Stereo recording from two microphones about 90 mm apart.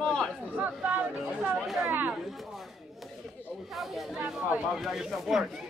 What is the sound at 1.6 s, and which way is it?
Speech, centre (ahead or behind).